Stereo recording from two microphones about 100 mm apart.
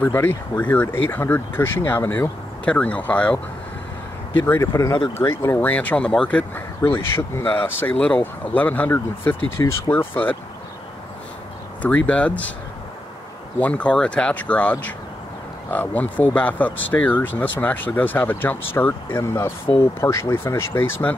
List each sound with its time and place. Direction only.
0.0 s speech: 20° left (ahead or behind)
4.5 s speech: 30° left (ahead or behind)
11.8 s speech: 15° left (ahead or behind)
13.6 s speech: 15° left (ahead or behind)